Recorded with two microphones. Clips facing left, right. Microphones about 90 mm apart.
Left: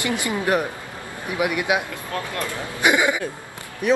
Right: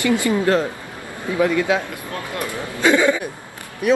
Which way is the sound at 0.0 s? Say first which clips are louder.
Right 6 dB; 20° left (ahead or behind).